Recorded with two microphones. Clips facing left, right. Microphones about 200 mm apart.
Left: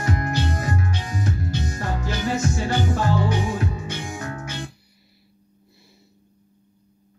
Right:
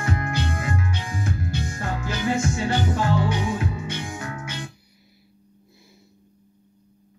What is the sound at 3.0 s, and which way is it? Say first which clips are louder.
Music: left 1 dB; 40° left (ahead or behind).